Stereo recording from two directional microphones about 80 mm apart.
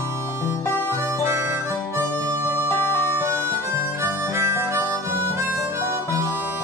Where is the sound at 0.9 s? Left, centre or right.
Right.